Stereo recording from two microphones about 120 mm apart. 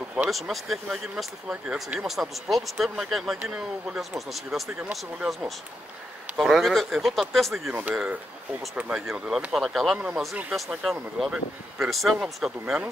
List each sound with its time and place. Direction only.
0.3 s speech: centre (ahead or behind)
4.8 s speech: 15° right (ahead or behind)
6.3 s speech: centre (ahead or behind)
7.7 s speech: 10° right (ahead or behind)